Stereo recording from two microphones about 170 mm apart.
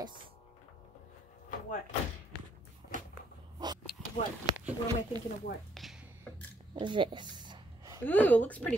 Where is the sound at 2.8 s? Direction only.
75° left (ahead or behind).